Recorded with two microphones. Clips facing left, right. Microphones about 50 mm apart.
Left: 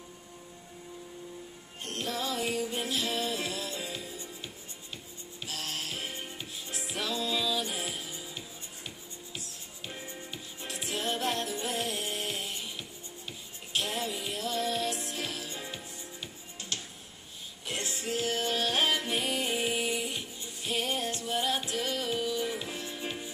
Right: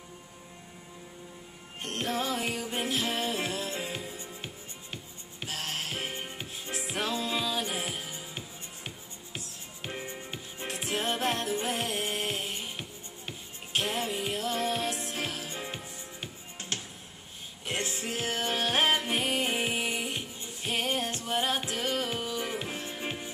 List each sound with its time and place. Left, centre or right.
1.8 s music: right